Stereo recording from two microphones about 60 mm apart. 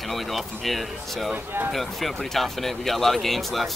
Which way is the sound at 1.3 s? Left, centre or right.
Right.